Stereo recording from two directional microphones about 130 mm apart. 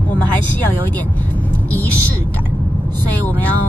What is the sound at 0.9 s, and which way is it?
Vehicle, 15° left (ahead or behind).